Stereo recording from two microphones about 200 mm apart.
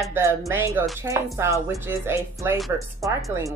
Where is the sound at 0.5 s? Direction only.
10° right (ahead or behind).